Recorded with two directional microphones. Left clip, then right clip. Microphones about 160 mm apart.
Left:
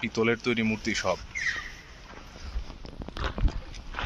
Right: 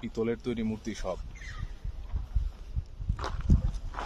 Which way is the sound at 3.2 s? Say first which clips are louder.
Left 2 dB; 20° right (ahead or behind).